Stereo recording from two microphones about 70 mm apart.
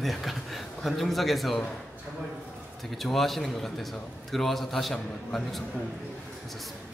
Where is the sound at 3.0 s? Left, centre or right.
Centre.